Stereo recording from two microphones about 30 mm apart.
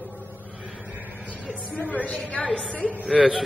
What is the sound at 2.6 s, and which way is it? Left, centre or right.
Speech, left.